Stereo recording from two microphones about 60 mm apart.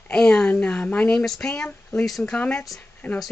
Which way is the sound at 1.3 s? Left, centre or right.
Centre.